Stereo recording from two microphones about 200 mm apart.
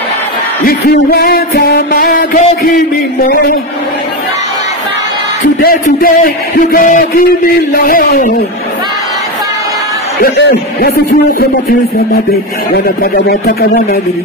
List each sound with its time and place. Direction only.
0.7 s music: 50° left (ahead or behind)
5.6 s music: 45° left (ahead or behind)
10.2 s music: 50° left (ahead or behind)
12.7 s music: 45° left (ahead or behind)